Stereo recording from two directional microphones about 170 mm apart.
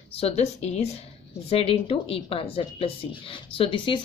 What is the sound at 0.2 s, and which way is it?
A woman's voice, 40° left (ahead or behind).